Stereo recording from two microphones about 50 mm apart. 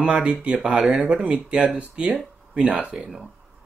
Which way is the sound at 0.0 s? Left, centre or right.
Centre.